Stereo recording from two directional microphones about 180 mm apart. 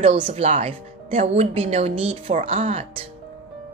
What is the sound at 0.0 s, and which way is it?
A woman's voice, 35° right (ahead or behind).